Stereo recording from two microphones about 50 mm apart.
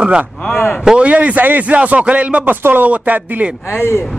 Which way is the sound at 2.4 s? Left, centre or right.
Right.